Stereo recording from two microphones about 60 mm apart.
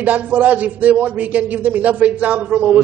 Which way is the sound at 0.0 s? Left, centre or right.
Right.